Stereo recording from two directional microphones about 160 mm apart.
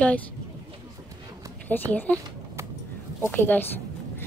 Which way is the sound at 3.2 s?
10° left (ahead or behind).